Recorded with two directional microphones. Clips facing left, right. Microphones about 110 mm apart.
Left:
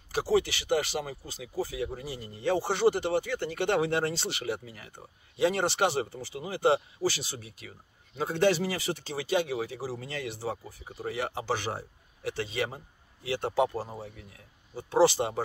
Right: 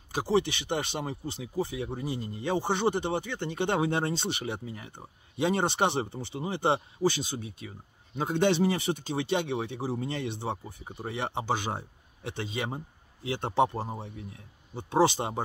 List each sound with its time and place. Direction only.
0.1 s speech: 25° right (ahead or behind)